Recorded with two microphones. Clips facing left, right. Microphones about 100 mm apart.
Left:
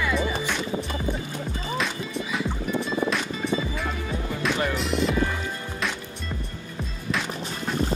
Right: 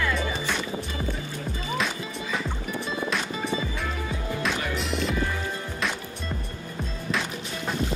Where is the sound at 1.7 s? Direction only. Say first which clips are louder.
Left 1 dB; centre (ahead or behind).